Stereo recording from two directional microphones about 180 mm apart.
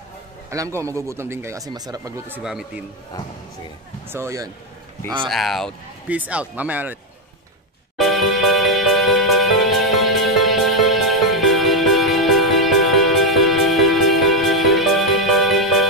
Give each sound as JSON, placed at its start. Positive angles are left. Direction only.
{"t": 0.5, "sound": "speech", "side_deg": -15}
{"t": 4.1, "sound": "speech", "side_deg": -15}
{"t": 5.3, "sound": "speech", "side_deg": 0}
{"t": 8.0, "sound": "music", "side_deg": 0}